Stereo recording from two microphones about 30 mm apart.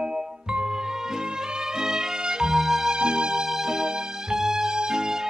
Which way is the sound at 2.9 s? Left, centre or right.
Right.